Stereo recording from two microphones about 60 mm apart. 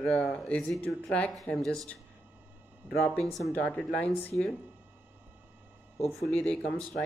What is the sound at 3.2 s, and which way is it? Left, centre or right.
Speech, centre.